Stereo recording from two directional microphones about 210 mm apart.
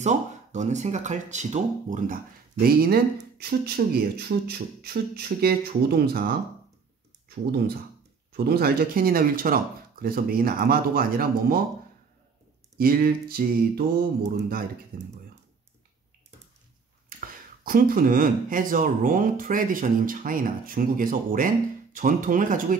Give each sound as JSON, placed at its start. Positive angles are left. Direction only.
{"t": 0.0, "sound": "speech", "side_deg": -35}
{"t": 12.7, "sound": "speech", "side_deg": -45}
{"t": 17.1, "sound": "a sound", "side_deg": -40}
{"t": 17.6, "sound": "speech", "side_deg": -40}